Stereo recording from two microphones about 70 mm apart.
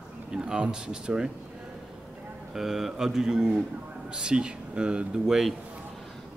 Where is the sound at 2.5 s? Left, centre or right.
Centre.